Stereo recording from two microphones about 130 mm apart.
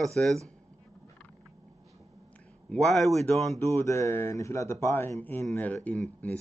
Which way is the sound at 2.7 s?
5° left (ahead or behind).